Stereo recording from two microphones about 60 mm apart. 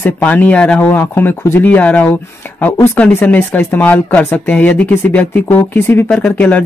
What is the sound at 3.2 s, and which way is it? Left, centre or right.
Speech, left.